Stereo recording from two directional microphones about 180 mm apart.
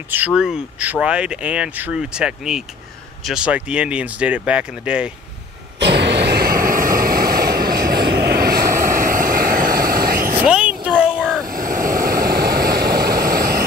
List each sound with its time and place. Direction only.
0.1 s speech: 5° right (ahead or behind)
5.8 s vehicle: 70° right (ahead or behind); by 10.3 s 55° right (ahead or behind)
10.4 s a sound: 5° right (ahead or behind)
11.4 s vehicle: 50° right (ahead or behind)